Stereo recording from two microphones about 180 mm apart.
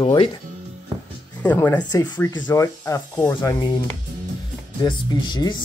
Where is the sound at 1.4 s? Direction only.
10° left (ahead or behind).